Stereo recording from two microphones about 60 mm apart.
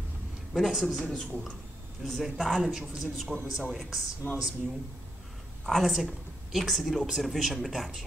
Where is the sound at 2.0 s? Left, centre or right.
Centre.